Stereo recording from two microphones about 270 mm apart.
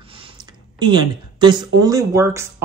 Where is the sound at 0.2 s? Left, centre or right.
Centre.